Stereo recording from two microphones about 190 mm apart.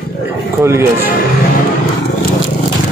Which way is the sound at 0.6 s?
15° right (ahead or behind).